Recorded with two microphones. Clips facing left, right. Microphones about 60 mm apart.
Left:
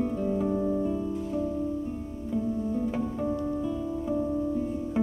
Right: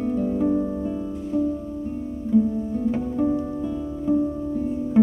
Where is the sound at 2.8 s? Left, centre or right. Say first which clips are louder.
Right 6 dB; centre.